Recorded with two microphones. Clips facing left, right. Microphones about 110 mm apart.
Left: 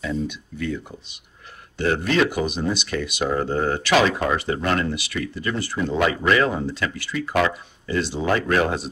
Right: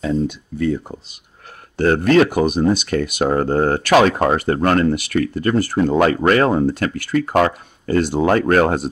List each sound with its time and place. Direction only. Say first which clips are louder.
0.0 s speech: right 6 dB; 40° right (ahead or behind)